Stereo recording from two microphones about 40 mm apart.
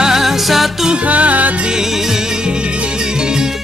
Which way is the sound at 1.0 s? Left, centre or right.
Right.